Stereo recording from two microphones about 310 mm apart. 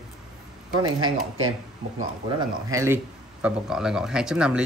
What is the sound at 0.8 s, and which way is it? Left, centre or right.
Speech, right.